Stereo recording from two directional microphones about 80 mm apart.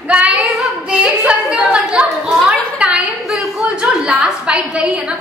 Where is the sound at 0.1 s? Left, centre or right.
Centre.